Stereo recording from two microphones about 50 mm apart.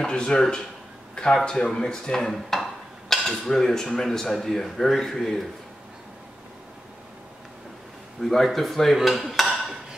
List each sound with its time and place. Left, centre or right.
0.0 s speech: centre
1.4 s dishes: centre
4.9 s a man's voice: centre
8.2 s dishes: centre